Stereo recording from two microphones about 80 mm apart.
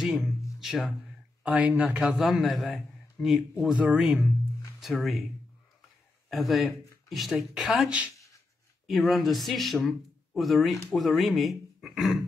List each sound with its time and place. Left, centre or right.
0.0 s music: centre
1.4 s speech: centre
3.7 s speech: centre
4.7 s speech: centre
6.3 s speech: centre